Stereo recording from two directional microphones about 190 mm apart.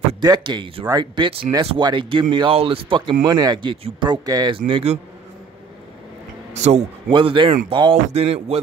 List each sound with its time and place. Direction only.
0.2 s speech: 20° right (ahead or behind)
6.5 s speech: 35° right (ahead or behind)
7.1 s speech: 25° right (ahead or behind)